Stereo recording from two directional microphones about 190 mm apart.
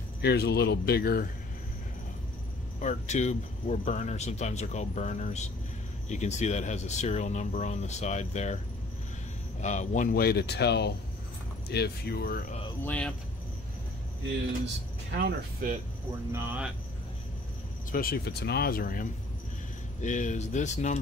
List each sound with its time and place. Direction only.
0.2 s speech: 60° left (ahead or behind)
2.8 s speech: 40° left (ahead or behind)
9.6 s speech: 40° left (ahead or behind)
10.1 s speech: 55° left (ahead or behind)
12.8 s speech: 5° left (ahead or behind)
15.1 s speech: 55° right (ahead or behind)
16.3 s speech: 10° right (ahead or behind)
17.9 s speech: 50° left (ahead or behind)